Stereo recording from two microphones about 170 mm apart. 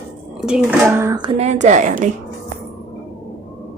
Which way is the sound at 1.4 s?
45° right (ahead or behind).